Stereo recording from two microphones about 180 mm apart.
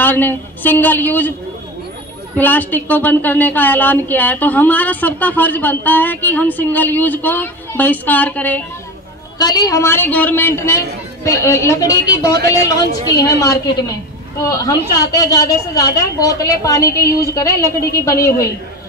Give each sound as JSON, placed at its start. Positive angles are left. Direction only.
{"t": 0.0, "sound": "a woman's voice", "side_deg": 10}
{"t": 2.3, "sound": "a woman's voice", "side_deg": 10}
{"t": 9.4, "sound": "a woman's voice", "side_deg": 20}